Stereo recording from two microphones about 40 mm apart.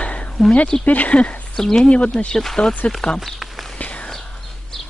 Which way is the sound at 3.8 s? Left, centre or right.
Left.